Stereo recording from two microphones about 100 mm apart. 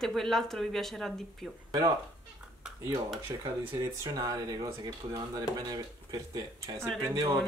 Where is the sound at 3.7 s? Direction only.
35° right (ahead or behind).